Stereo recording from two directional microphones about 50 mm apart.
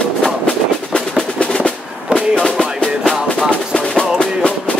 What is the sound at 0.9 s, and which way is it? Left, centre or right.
Percussion, centre.